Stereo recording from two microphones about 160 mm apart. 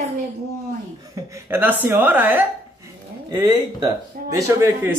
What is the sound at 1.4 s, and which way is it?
Speech, 15° right (ahead or behind).